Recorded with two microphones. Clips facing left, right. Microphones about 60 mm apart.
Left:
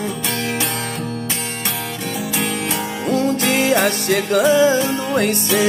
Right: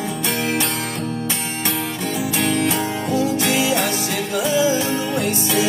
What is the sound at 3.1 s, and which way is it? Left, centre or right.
Music, left.